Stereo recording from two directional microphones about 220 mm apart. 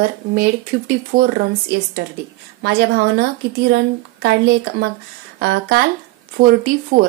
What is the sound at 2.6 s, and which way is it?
Speech, 50° right (ahead or behind).